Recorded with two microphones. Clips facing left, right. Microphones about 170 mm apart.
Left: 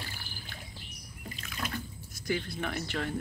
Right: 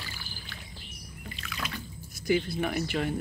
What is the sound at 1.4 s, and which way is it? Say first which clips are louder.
Water: even; 45° left (ahead or behind).